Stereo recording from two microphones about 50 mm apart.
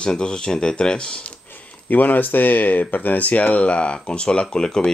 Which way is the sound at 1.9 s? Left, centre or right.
Left.